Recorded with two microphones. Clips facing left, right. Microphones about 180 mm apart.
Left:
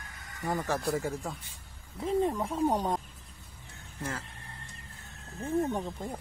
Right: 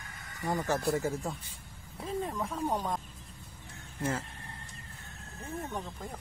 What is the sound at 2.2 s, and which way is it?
Speech, 25° left (ahead or behind).